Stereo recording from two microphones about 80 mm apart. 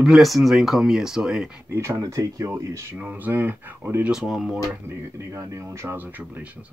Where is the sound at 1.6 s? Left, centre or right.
Right.